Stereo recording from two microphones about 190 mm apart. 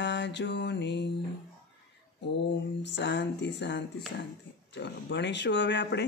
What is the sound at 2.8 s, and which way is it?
Speech, 70° left (ahead or behind).